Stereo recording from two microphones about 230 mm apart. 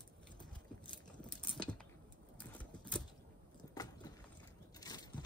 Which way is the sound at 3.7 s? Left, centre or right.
Centre.